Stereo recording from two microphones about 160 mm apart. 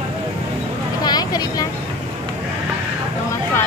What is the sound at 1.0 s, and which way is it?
Vehicle, 25° left (ahead or behind).